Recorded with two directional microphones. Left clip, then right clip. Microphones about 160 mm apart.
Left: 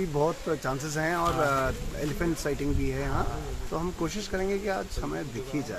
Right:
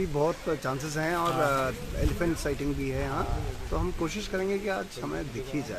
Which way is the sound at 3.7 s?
10° left (ahead or behind).